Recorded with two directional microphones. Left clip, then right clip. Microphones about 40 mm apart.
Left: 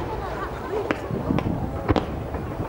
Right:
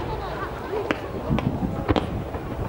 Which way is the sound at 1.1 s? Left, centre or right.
Centre.